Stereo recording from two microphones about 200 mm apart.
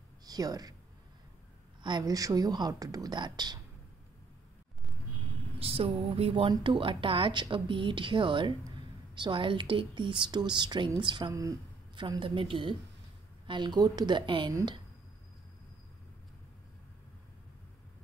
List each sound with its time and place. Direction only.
0.2 s speech: 20° right (ahead or behind)
1.8 s a woman's voice: 20° right (ahead or behind)
5.6 s a woman's voice: 30° right (ahead or behind)